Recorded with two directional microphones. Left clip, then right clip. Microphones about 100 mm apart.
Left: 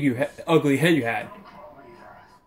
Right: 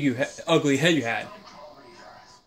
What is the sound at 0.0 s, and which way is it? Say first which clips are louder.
Speech: left 1 dB; 15° right (ahead or behind).